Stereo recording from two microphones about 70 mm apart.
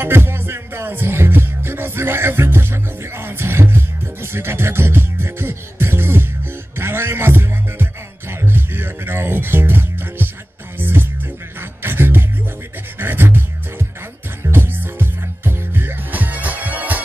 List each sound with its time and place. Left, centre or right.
0.0 s music: right
11.8 s beatboxing: right
13.0 s music: right